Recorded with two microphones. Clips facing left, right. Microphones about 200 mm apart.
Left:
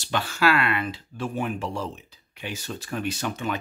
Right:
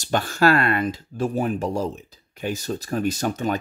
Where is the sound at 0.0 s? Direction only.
45° right (ahead or behind).